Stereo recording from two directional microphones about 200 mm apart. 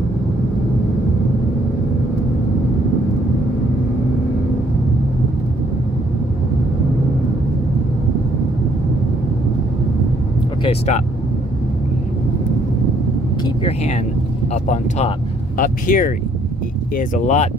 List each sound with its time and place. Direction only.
10.6 s speech: 30° left (ahead or behind)
14.5 s speech: 35° left (ahead or behind)